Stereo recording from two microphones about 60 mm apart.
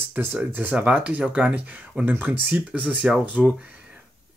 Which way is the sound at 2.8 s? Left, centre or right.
Centre.